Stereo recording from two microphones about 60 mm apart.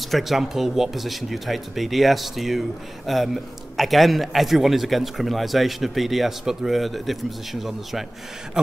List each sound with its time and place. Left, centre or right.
0.0 s a man's voice: centre